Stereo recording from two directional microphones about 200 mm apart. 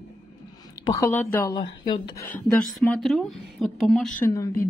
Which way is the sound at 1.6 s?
25° left (ahead or behind).